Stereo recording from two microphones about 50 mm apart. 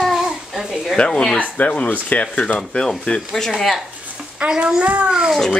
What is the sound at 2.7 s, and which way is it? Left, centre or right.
Speech, centre.